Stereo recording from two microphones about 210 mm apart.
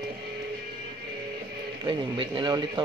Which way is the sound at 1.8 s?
25° right (ahead or behind).